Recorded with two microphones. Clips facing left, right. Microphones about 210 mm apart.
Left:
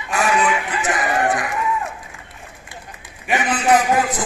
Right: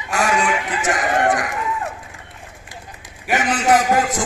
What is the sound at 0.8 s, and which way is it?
Speech, 45° right (ahead or behind).